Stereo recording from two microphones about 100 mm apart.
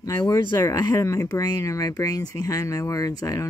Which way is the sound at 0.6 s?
35° left (ahead or behind).